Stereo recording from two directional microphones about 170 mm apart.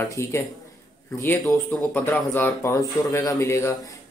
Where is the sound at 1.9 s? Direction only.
10° left (ahead or behind).